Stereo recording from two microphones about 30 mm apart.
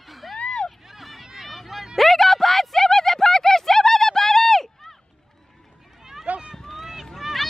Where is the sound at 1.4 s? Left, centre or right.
Centre.